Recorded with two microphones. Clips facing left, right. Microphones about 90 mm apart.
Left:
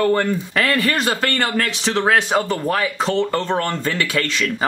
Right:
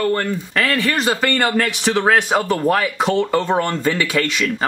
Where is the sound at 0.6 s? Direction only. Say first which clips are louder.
Right 1 dB; centre (ahead or behind).